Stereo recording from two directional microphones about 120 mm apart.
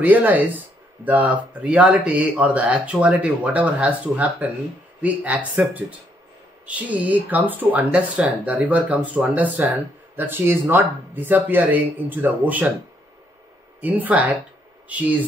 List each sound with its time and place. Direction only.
0.0 s speech: 15° right (ahead or behind)
13.7 s speech: 15° right (ahead or behind)